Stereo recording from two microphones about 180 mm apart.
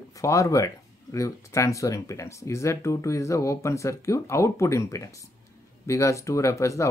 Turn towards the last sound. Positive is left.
turn(degrees=15)  # may be behind; listen again after turning